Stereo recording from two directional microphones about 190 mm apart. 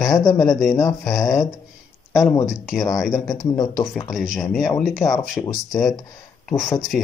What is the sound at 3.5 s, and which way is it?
Speech, 20° left (ahead or behind).